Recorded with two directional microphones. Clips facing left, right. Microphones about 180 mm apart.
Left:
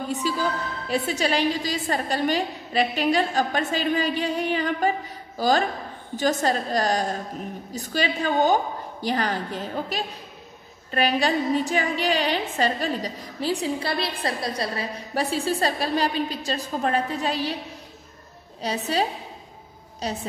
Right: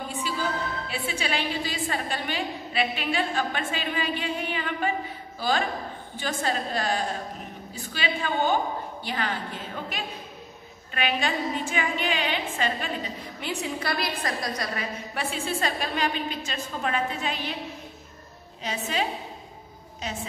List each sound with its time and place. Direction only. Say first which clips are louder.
0.1 s a woman's voice: left 5 dB; 40° left (ahead or behind)
18.6 s a woman's voice: left 4 dB; 35° left (ahead or behind)